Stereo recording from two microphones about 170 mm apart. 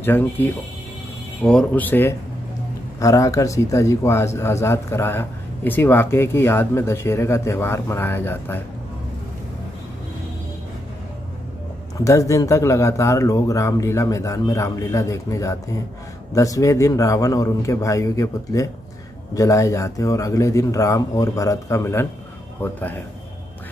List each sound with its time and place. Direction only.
0.0 s a man's voice: 10° left (ahead or behind)
12.0 s a man's voice: 20° left (ahead or behind)